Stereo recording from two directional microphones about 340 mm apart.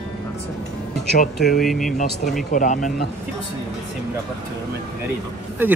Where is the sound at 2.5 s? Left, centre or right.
Left.